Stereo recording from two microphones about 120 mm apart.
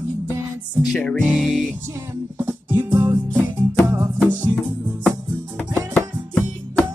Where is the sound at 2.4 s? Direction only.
20° right (ahead or behind).